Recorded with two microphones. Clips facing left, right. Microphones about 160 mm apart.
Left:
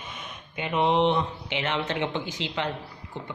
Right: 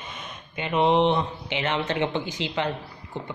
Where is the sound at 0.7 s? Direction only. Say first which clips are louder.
Right 2 dB; 30° right (ahead or behind).